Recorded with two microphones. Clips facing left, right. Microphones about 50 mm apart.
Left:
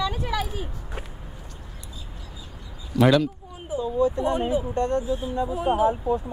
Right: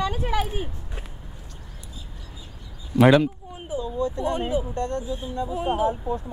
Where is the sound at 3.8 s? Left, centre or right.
Centre.